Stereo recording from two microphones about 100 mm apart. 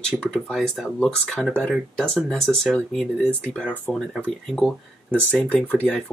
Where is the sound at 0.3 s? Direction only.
Centre (ahead or behind); by 5.9 s 15° left (ahead or behind).